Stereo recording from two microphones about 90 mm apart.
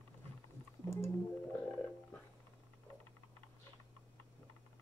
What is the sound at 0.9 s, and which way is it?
Music, 30° left (ahead or behind).